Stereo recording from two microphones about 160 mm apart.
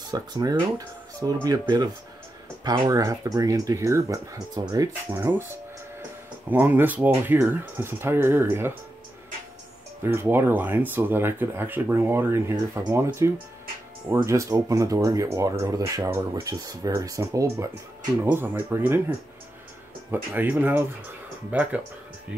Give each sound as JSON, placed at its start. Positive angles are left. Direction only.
{"t": 0.1, "sound": "speech", "side_deg": -25}
{"t": 10.0, "sound": "speech", "side_deg": -15}
{"t": 20.1, "sound": "speech", "side_deg": -10}